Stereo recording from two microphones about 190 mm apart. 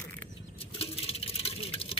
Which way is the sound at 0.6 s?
30° left (ahead or behind).